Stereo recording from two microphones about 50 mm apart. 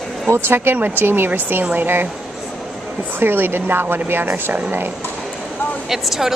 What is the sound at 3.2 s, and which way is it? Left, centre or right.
Speech, right.